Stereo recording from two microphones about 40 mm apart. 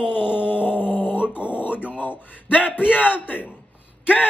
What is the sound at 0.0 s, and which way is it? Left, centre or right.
Speech, right.